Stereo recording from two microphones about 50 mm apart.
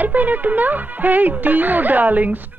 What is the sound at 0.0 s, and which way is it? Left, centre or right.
A woman's voice, right.